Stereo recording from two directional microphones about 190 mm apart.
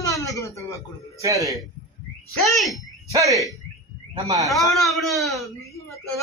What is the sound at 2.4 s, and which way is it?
Speech, centre (ahead or behind).